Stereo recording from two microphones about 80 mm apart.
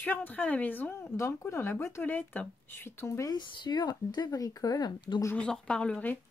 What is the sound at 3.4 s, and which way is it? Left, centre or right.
Speech, left.